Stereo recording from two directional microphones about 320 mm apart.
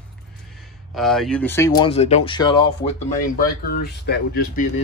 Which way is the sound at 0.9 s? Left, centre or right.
Centre.